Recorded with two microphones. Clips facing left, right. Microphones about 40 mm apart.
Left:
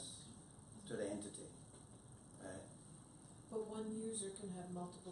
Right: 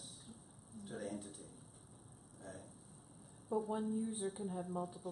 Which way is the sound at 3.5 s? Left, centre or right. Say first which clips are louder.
Right 7 dB; right.